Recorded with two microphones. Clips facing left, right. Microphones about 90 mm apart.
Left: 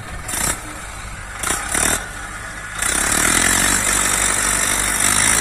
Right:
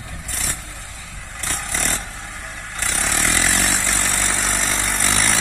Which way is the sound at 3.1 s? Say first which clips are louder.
Left 2 dB; 20° left (ahead or behind).